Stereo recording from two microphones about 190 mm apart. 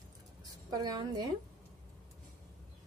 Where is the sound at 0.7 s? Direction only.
20° right (ahead or behind).